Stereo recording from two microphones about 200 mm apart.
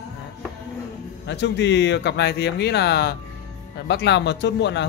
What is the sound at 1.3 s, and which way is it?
Speech, 60° left (ahead or behind).